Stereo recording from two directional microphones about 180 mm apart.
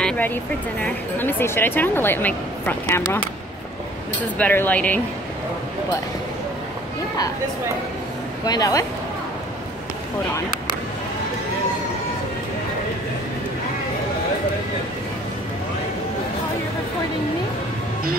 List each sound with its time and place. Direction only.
0.0 s a woman's voice: 10° left (ahead or behind)
4.4 s a woman's voice: 10° left (ahead or behind)
8.5 s a woman's voice: 20° left (ahead or behind)